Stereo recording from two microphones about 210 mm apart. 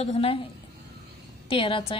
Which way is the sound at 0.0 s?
30° left (ahead or behind).